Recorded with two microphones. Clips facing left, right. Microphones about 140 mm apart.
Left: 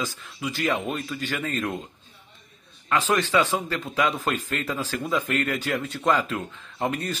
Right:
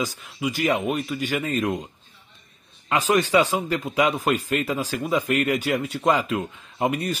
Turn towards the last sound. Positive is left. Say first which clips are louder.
# right 3 dB
turn(degrees=-10)  # may be behind; listen again after turning